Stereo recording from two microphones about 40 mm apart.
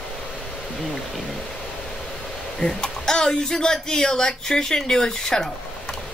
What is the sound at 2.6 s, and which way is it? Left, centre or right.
Speech, centre.